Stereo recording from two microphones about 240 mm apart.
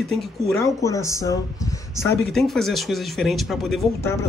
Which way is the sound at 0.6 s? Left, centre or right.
Centre.